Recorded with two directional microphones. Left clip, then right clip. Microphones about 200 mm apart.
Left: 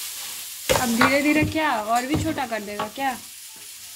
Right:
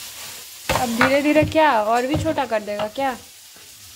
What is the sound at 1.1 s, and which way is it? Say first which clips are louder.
Speech: right 4 dB; 20° right (ahead or behind).